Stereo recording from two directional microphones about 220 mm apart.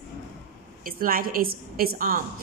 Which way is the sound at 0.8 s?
40° right (ahead or behind).